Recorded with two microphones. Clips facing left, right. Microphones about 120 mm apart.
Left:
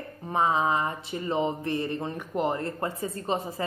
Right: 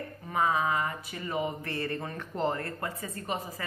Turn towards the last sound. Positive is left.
turn(degrees=30)  # may be behind; listen again after turning